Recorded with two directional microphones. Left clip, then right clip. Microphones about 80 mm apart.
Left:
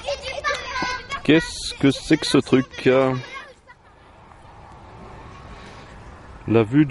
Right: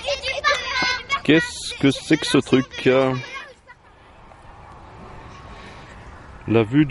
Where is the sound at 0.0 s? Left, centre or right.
Centre.